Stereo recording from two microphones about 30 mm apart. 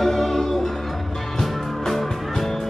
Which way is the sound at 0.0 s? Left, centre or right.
Centre.